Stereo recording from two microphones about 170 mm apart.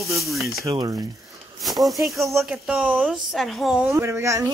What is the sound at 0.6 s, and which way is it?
Speech, 20° right (ahead or behind).